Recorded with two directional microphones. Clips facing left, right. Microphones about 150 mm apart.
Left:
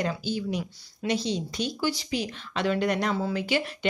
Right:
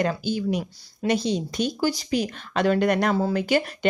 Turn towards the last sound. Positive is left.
turn(degrees=-45)  # may be behind; listen again after turning